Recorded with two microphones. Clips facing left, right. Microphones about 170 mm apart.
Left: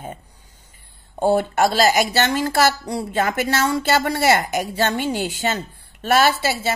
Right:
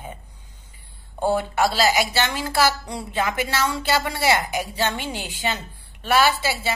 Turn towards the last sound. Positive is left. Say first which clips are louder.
# left 2 dB
turn(degrees=45)  # may be behind; listen again after turning